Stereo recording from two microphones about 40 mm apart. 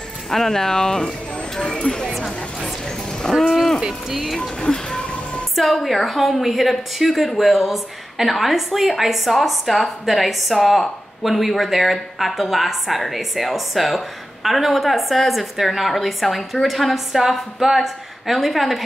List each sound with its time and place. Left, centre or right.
0.3 s speech: centre
2.1 s speech: centre
3.2 s a sound: centre
4.1 s a woman's voice: centre
4.4 s speech: centre
5.6 s a woman's voice: centre